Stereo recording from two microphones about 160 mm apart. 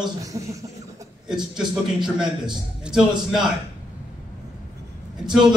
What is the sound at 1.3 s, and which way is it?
A man's voice, 5° right (ahead or behind).